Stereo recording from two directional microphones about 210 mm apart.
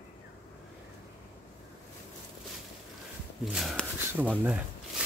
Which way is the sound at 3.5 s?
Centre (ahead or behind).